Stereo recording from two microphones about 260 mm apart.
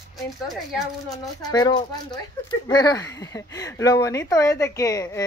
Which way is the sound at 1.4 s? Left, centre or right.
Centre.